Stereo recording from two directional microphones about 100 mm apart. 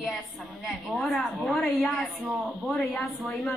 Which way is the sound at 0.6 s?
5° left (ahead or behind).